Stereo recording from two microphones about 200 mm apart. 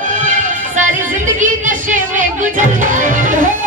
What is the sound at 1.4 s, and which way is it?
Music, 40° right (ahead or behind).